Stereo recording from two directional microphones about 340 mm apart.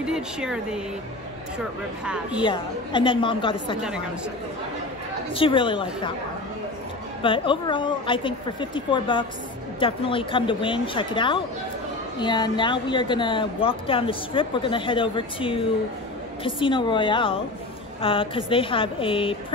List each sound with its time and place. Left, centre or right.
0.0 s speech: centre
2.0 s speech: centre
2.4 s speech: centre
5.3 s speech: centre
7.2 s speech: centre